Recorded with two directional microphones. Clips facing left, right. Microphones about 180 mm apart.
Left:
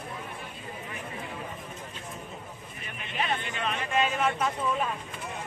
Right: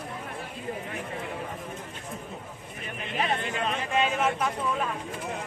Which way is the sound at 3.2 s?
35° right (ahead or behind).